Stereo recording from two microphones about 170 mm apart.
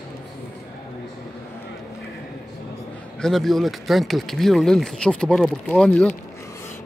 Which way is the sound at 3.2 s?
Centre (ahead or behind).